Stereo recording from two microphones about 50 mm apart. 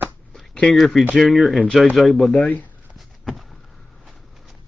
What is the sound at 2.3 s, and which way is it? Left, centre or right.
Speech, left.